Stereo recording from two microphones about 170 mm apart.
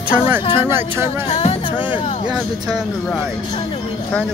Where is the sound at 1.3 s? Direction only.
35° left (ahead or behind).